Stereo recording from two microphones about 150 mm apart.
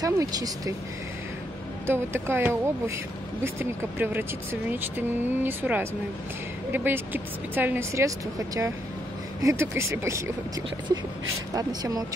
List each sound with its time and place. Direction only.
0.0 s speech: 25° right (ahead or behind)
1.9 s speech: 15° right (ahead or behind)
11.5 s speech: 25° right (ahead or behind)